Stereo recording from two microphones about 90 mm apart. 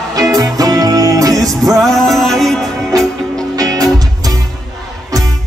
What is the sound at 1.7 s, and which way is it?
Music, 5° left (ahead or behind).